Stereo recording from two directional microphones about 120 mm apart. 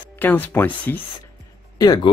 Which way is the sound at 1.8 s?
35° left (ahead or behind).